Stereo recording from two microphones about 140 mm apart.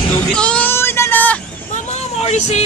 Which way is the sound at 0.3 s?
5° left (ahead or behind).